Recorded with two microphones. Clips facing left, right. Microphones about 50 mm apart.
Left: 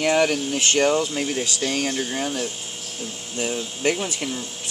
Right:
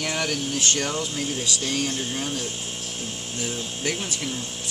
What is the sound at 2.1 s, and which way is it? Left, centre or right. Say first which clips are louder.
Speech: left 3 dB; left.